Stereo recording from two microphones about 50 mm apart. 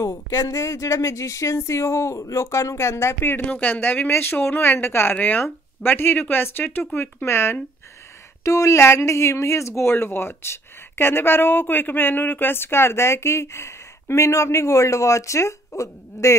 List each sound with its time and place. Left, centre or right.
0.0 s speech: left
3.6 s speech: left
5.1 s speech: left
5.4 s speech: left
7.2 s speech: left
8.5 s speech: left
9.9 s speech: left